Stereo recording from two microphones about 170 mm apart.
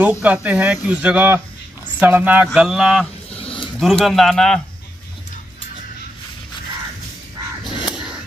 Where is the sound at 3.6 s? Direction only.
Centre (ahead or behind).